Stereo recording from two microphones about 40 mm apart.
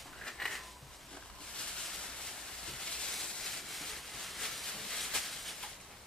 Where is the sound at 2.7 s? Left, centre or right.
Centre.